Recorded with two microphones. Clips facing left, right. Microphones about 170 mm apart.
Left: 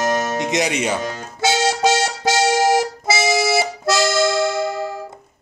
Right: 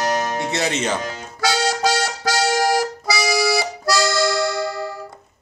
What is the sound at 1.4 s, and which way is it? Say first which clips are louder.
Music: left 2 dB; 25° left (ahead or behind).